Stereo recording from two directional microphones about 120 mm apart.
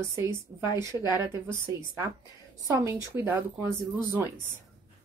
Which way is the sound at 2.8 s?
25° right (ahead or behind).